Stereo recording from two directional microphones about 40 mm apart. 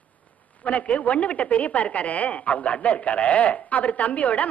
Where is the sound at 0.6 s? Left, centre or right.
Left.